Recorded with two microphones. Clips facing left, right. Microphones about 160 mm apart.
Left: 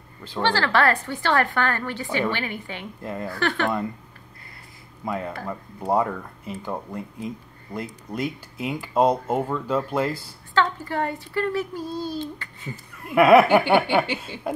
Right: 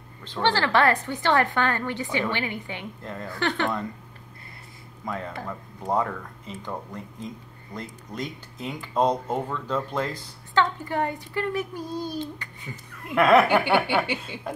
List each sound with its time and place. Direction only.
0.4 s a woman's voice: 20° right (ahead or behind)
3.0 s speech: 10° left (ahead or behind)
3.3 s a woman's voice: 20° right (ahead or behind)
5.0 s speech: 10° left (ahead or behind)
10.5 s a child's voice: 20° right (ahead or behind)
13.1 s speech: 10° left (ahead or behind)